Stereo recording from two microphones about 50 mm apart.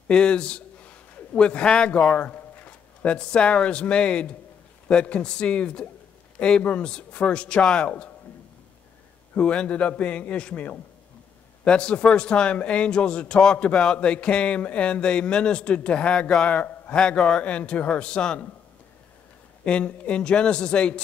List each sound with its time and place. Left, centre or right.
0.1 s a man's voice: centre
9.3 s a man's voice: left
16.4 s a man's voice: left
16.9 s a man's voice: centre
19.6 s a man's voice: left